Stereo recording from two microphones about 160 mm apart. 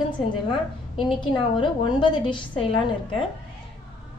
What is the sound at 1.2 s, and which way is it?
A woman's voice, 30° left (ahead or behind).